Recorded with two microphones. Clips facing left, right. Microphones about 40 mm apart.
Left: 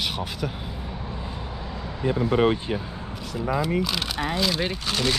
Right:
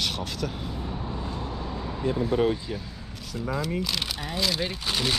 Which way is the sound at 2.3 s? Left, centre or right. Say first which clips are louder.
Left 5 dB; left.